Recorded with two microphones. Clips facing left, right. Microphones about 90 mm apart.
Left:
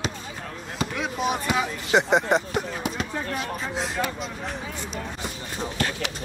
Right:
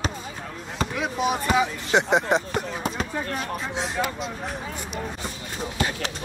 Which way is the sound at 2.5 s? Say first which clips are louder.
Even; 40° right (ahead or behind).